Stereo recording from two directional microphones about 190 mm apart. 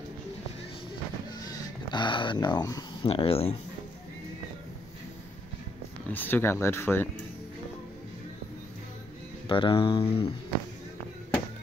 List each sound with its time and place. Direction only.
1.4 s a sound: 20° left (ahead or behind)
3.1 s speech: 30° left (ahead or behind)
6.1 s speech: 10° left (ahead or behind)
9.5 s speech: 25° left (ahead or behind)